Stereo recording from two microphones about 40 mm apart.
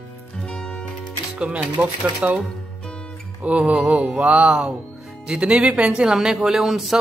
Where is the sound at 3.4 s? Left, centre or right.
Right.